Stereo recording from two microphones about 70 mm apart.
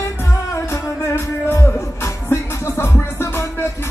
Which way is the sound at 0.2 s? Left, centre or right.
Left.